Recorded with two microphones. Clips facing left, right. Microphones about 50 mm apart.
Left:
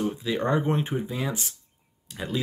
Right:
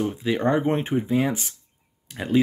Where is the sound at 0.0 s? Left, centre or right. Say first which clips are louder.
Right 4 dB; right.